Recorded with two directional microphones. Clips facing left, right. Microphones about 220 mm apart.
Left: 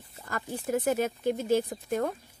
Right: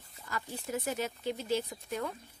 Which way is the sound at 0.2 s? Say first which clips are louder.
Left 5 dB; 50° left (ahead or behind).